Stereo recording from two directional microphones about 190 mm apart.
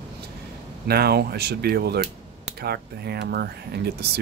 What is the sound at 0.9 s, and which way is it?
Speech, 55° right (ahead or behind).